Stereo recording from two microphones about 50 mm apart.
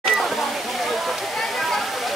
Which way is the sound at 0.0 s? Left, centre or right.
Centre.